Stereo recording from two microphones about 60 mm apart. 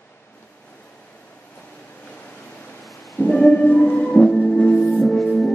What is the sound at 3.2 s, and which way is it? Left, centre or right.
Music, centre.